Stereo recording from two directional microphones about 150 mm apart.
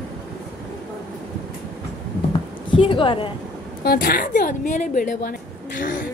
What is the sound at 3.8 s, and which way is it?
A woman's voice, 90° left.